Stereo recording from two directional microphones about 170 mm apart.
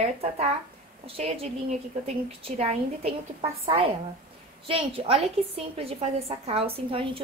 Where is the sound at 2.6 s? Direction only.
35° right (ahead or behind).